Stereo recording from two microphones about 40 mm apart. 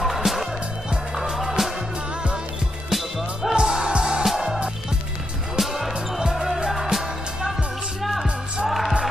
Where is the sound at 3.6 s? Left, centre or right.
Centre.